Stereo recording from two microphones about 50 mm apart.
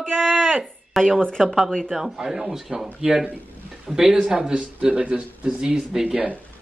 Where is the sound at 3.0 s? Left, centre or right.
Right.